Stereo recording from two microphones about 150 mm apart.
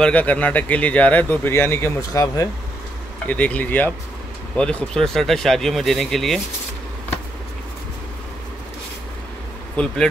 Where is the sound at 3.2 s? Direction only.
10° left (ahead or behind).